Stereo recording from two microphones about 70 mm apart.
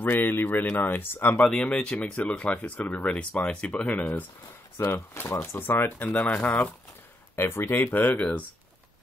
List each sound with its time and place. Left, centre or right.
0.0 s speech: left
4.7 s speech: left
7.3 s speech: left; by 8.5 s centre